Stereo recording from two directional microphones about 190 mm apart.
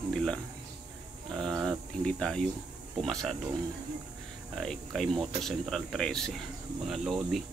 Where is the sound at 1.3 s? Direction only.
5° left (ahead or behind).